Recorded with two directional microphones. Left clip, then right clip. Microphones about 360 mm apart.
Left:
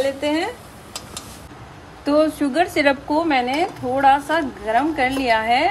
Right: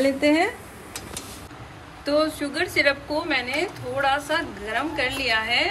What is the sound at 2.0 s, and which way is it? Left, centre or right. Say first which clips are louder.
A woman's voice: left 5 dB; centre.